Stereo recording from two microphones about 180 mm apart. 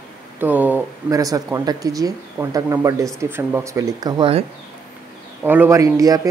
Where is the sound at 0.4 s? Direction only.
10° right (ahead or behind).